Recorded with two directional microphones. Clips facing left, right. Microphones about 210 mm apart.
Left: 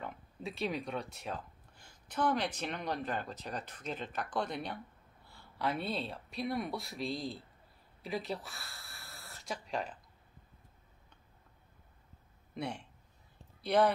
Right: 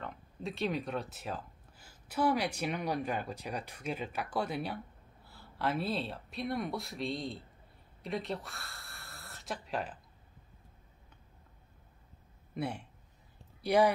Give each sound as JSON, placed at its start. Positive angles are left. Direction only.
{"t": 0.0, "sound": "speech", "side_deg": 0}
{"t": 12.5, "sound": "speech", "side_deg": -5}